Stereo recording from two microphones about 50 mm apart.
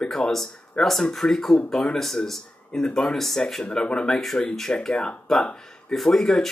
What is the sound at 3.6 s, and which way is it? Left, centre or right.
Speech, centre.